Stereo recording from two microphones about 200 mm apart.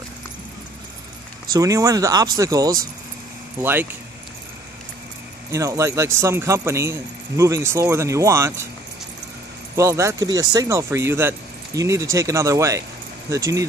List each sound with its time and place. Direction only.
1.5 s speech: 15° right (ahead or behind)
5.5 s speech: 15° right (ahead or behind)
9.8 s speech: 15° right (ahead or behind)